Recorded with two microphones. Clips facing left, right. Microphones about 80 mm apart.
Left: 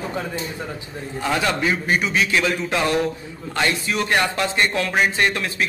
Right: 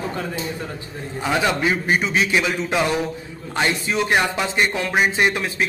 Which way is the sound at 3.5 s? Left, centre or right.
Right.